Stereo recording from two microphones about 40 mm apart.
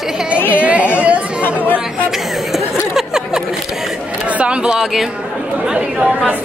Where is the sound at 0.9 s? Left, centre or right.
Right.